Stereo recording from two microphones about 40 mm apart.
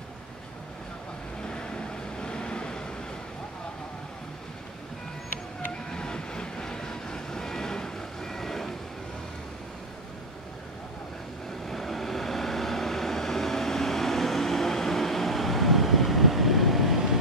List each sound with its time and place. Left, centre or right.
1.5 s vehicle: left
5.9 s train: left
11.6 s vehicle: centre